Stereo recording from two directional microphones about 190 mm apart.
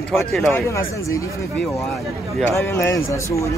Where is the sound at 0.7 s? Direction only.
15° left (ahead or behind).